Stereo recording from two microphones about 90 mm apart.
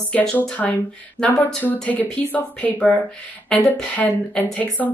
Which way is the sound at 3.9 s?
15° left (ahead or behind).